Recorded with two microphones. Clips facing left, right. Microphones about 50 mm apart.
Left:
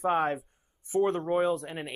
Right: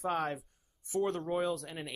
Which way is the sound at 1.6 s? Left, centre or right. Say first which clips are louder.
Left 5 dB; left.